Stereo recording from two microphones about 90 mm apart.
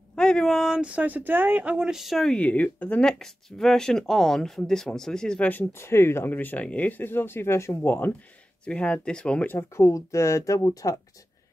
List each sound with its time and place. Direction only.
0.1 s a sound: 10° left (ahead or behind)
0.7 s speech: 10° right (ahead or behind)
2.3 s speech: 15° left (ahead or behind)
8.6 s speech: 10° left (ahead or behind)
9.6 s speech: 30° left (ahead or behind)